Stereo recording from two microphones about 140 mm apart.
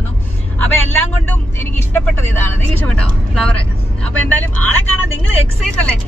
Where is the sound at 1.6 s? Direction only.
15° left (ahead or behind).